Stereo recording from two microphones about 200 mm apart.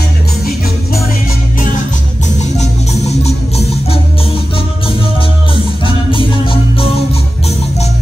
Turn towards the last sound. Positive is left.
turn(degrees=25)  # may be behind; listen again after turning